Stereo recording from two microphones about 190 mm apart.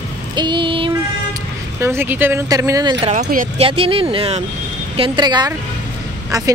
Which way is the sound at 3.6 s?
30° right (ahead or behind).